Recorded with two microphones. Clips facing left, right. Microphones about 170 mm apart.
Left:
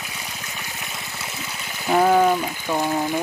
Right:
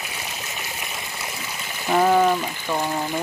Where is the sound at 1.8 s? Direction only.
5° left (ahead or behind).